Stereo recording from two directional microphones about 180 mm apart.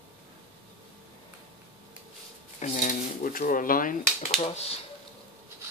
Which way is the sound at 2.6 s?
45° left (ahead or behind).